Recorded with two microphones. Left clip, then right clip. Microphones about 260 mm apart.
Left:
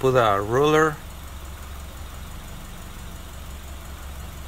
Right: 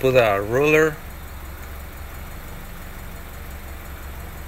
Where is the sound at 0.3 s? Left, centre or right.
Centre.